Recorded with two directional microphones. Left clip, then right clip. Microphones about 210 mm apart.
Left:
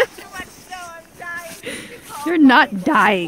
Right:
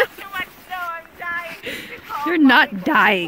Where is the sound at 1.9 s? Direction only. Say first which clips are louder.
Right 5 dB; 30° left (ahead or behind).